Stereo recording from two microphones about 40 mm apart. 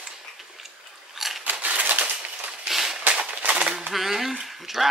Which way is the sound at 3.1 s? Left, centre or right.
Right.